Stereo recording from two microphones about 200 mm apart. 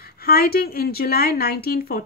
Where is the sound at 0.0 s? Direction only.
50° left (ahead or behind).